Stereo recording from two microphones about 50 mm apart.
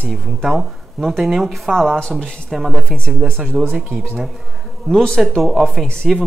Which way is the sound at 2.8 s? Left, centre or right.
Centre.